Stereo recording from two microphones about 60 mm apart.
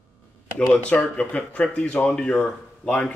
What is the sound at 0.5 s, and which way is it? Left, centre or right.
Speech, left.